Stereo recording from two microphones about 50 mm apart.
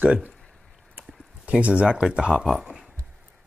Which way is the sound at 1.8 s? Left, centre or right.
Centre.